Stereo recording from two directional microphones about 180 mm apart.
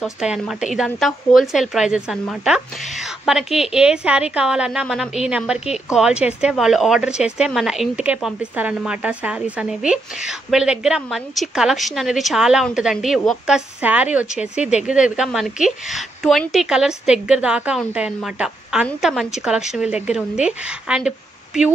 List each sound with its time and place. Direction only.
0.0 s speech: centre (ahead or behind)